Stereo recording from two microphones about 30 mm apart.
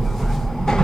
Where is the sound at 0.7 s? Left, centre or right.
Left.